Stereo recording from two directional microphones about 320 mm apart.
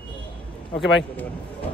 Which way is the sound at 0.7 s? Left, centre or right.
Left.